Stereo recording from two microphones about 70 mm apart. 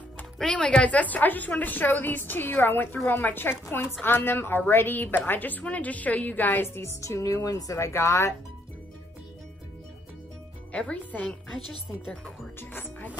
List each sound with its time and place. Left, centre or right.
0.4 s a woman's voice: centre; by 6.9 s left
7.0 s speech: left
10.7 s speech: centre
12.5 s speech: left